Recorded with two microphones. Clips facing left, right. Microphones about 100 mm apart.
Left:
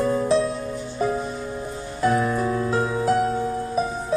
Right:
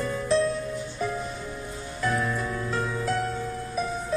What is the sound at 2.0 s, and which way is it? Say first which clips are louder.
Music: left 7 dB; 35° left (ahead or behind).